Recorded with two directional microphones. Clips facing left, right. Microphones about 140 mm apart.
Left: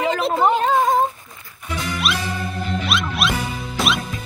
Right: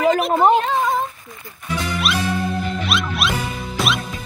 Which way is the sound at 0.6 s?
45° left (ahead or behind).